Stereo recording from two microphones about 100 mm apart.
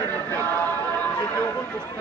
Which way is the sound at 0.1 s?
15° left (ahead or behind).